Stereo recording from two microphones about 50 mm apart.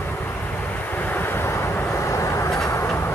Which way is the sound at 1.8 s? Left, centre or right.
Left.